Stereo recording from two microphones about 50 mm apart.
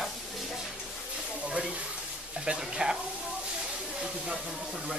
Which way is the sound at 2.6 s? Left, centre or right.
Centre.